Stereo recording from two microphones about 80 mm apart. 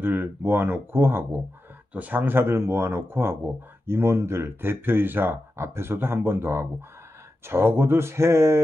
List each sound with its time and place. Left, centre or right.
0.0 s speech: right